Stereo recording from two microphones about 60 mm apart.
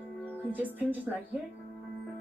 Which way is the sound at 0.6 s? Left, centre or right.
Right.